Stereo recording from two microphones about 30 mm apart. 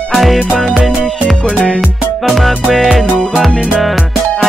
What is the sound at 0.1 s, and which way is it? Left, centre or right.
Music, centre.